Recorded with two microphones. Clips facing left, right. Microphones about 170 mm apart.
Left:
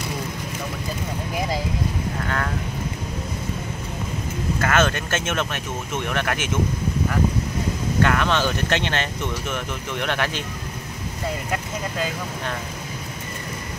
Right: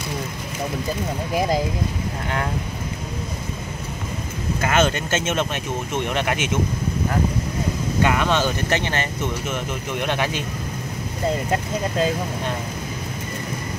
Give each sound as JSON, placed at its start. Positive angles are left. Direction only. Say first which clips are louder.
{"t": 4.6, "sound": "speech", "louder": "right 1 dB", "side_deg": -15}
{"t": 8.0, "sound": "speech", "louder": "right 1 dB", "side_deg": -10}